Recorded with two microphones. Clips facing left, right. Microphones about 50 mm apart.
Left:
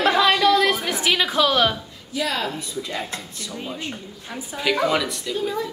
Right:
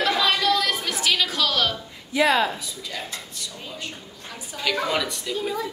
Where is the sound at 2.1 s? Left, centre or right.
Right.